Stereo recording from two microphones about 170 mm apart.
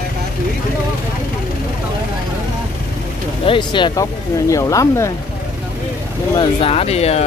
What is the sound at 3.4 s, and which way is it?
Speech, 30° left (ahead or behind).